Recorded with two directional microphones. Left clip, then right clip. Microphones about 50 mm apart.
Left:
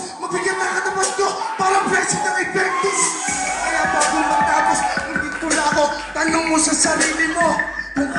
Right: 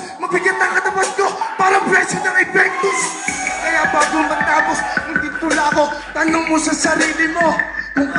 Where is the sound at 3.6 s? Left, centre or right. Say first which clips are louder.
Right 4 dB; right.